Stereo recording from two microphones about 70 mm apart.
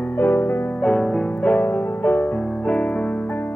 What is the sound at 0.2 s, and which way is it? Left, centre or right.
Music, left.